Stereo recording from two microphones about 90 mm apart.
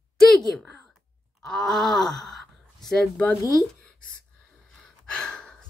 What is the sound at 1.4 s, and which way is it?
Speech, 5° left (ahead or behind).